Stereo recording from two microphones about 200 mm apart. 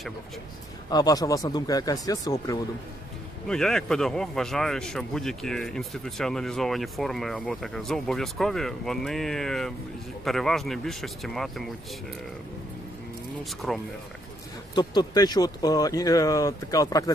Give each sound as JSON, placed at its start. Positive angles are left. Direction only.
{"t": 0.8, "sound": "speech", "side_deg": 20}
{"t": 3.4, "sound": "a man's voice", "side_deg": 5}
{"t": 13.4, "sound": "a man's voice", "side_deg": 0}
{"t": 14.8, "sound": "speech", "side_deg": 20}